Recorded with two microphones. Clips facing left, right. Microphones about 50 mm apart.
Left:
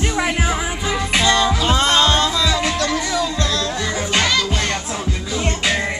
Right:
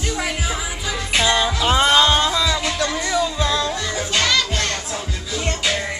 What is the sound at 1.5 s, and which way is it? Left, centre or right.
Music, centre.